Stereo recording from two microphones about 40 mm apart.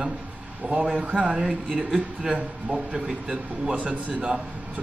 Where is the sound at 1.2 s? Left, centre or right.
Centre.